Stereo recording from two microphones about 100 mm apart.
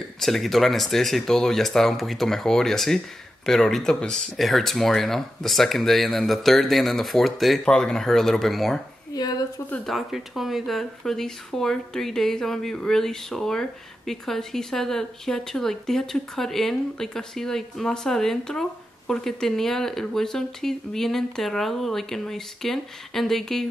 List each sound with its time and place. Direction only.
0.2 s speech: centre (ahead or behind)
9.1 s speech: 40° left (ahead or behind)
9.8 s speech: centre (ahead or behind)